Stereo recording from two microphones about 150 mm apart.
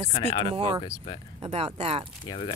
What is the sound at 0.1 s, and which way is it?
Speech, 35° left (ahead or behind).